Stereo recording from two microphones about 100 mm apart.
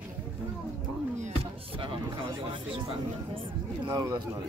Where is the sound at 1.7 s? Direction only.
60° right (ahead or behind).